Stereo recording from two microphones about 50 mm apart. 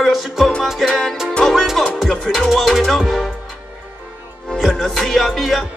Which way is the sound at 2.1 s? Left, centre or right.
Centre.